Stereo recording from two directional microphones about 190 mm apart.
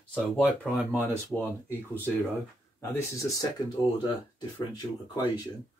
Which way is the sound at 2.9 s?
15° left (ahead or behind).